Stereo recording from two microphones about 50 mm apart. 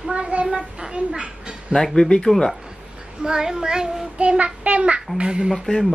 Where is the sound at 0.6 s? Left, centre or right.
Centre.